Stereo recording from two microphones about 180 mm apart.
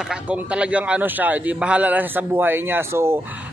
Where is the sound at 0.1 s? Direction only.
5° right (ahead or behind).